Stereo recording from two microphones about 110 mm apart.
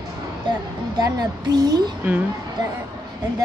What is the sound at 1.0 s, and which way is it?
Speech, 35° right (ahead or behind).